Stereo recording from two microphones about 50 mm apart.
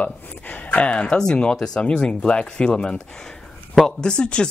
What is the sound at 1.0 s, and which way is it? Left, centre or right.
Speech, centre.